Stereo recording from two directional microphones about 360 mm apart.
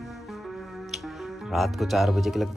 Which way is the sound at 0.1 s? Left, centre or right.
Centre.